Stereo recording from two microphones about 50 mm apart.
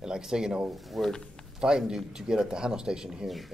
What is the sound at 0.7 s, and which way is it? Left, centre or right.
Speech, centre.